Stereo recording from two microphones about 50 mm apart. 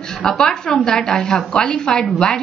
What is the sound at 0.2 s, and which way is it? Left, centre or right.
A woman's voice, centre.